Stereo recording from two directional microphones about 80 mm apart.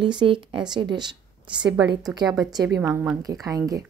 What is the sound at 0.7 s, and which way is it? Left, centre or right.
Speech, right.